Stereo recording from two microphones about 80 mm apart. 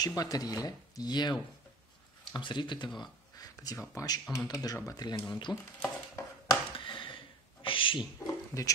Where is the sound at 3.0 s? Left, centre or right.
Left.